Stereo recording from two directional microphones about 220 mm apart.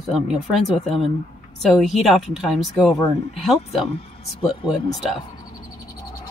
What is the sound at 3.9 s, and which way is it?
Speech, 25° left (ahead or behind).